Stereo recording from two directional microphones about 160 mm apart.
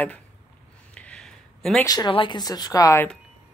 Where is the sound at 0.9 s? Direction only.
5° left (ahead or behind).